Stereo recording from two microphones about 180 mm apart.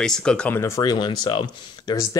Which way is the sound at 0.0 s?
5° left (ahead or behind).